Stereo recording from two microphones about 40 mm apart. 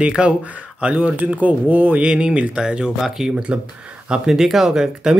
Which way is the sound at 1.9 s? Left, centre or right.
Right.